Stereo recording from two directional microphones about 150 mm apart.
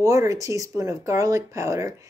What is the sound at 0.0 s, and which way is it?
Speech, 20° right (ahead or behind).